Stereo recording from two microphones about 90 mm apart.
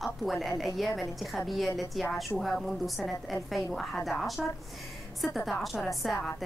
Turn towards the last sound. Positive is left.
turn(degrees=0)  # may be behind; listen again after turning